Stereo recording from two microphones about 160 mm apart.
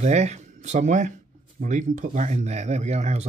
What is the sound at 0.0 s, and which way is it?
Speech, 45° right (ahead or behind).